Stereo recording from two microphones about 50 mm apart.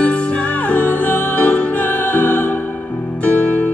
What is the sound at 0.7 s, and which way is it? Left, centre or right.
Music, left.